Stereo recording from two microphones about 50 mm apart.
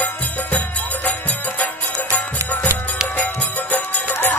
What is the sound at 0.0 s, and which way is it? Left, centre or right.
Music, left.